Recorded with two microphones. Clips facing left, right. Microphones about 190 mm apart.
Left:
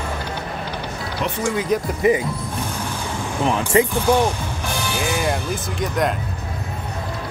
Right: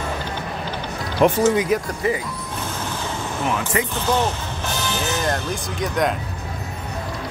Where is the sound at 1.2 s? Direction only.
50° right (ahead or behind).